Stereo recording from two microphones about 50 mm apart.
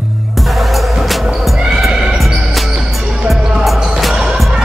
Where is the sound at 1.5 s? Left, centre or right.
Centre.